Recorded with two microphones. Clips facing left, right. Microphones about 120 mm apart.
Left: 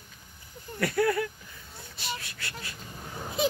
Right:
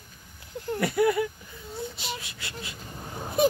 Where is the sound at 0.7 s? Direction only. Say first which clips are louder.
Right 2 dB; 15° right (ahead or behind).